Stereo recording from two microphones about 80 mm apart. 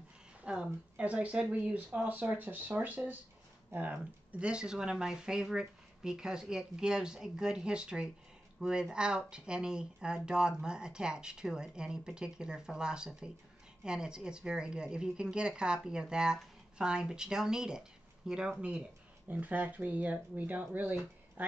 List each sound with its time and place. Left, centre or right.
0.4 s speech: centre